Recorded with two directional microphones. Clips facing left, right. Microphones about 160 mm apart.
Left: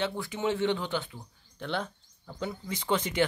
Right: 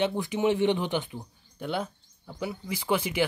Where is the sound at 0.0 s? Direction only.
20° right (ahead or behind).